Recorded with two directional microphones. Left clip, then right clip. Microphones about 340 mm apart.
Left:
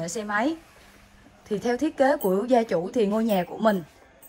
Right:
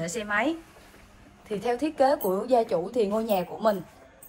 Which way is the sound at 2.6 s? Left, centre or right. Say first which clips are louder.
Left 1 dB; left.